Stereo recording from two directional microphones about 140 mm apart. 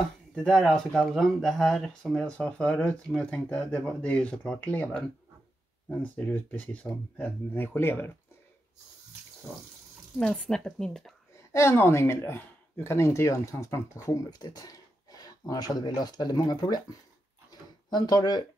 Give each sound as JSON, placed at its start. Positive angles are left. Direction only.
{"t": 0.3, "sound": "speech", "side_deg": 5}
{"t": 10.1, "sound": "speech", "side_deg": 5}
{"t": 11.5, "sound": "speech", "side_deg": 20}
{"t": 17.5, "sound": "a sound", "side_deg": 30}